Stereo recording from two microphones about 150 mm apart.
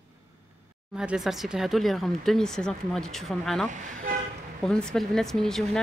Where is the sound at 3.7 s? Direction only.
60° right (ahead or behind).